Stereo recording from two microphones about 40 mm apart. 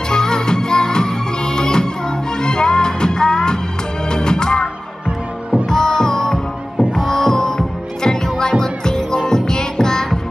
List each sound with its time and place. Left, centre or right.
0.1 s music: centre
5.7 s music: centre